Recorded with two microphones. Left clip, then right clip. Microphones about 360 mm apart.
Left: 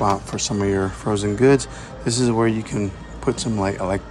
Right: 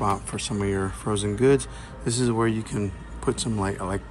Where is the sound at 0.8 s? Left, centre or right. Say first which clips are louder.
Left 5 dB; left.